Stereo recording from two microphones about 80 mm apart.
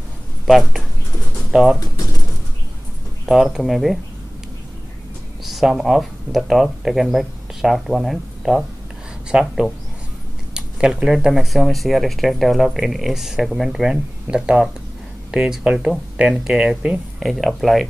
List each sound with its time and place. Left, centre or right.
0.5 s speech: centre
1.2 s pigeon: centre
1.8 s speech: left
3.3 s speech: centre
5.4 s speech: centre